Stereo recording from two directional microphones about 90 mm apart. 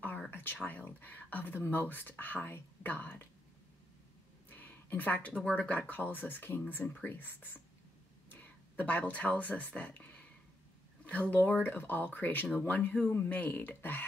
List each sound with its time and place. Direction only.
0.3 s speech: 20° left (ahead or behind)
4.5 s speech: 20° left (ahead or behind)